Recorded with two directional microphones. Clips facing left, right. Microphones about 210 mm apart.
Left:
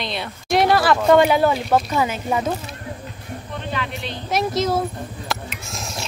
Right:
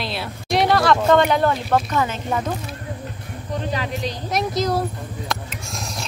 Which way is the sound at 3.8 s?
35° right (ahead or behind).